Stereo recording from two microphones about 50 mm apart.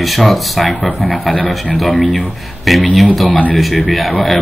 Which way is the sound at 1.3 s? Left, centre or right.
Left.